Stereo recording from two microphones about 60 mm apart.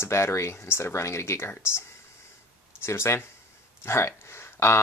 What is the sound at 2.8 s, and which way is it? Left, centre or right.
Speech, left.